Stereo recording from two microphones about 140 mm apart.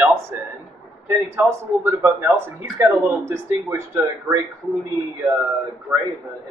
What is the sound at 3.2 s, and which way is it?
Speech, 20° right (ahead or behind).